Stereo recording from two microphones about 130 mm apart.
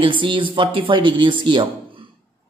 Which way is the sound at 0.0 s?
40° right (ahead or behind).